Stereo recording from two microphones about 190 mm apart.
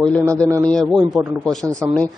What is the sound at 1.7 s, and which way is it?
Speech, 5° left (ahead or behind).